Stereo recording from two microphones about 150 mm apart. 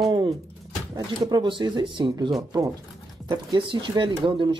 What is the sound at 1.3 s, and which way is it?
Speech, 30° right (ahead or behind).